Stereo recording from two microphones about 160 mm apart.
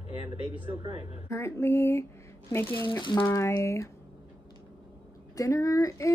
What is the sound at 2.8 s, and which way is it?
Speech, 30° left (ahead or behind).